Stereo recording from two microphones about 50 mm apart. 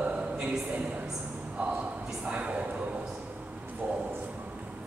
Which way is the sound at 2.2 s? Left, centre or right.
Right.